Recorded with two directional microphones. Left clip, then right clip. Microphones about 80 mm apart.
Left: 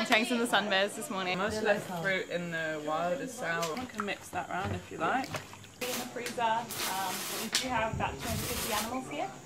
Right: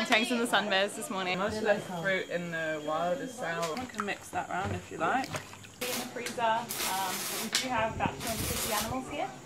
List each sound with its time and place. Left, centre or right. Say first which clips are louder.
0.0 s a woman's voice: even; centre
1.4 s speech: even; left
4.0 s a woman's voice: right 2 dB; centre
6.4 s speech: right 1 dB; centre
7.5 s a woman's voice: right 1 dB; centre